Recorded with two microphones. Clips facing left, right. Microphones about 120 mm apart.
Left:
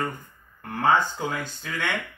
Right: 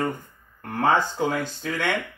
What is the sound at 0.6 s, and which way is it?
Speech, 45° right (ahead or behind).